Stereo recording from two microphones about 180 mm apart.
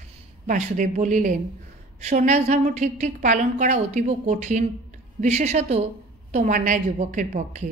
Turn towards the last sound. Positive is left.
turn(degrees=-45)  # may be behind; listen again after turning